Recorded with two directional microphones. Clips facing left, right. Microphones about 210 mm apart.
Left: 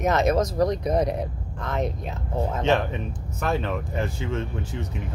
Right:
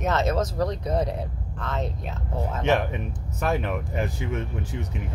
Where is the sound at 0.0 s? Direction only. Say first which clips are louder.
Left 3 dB; 15° left (ahead or behind).